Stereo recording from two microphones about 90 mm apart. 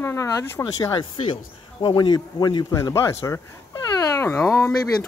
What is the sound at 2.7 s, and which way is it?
Speech, 35° left (ahead or behind).